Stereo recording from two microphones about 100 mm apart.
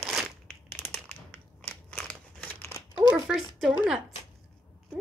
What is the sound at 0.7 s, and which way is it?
Crumpling, 20° left (ahead or behind).